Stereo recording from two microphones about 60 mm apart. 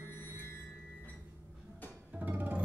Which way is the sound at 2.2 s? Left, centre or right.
Right.